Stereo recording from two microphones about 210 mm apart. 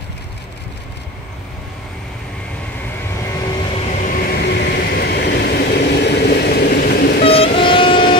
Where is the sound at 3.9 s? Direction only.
35° left (ahead or behind).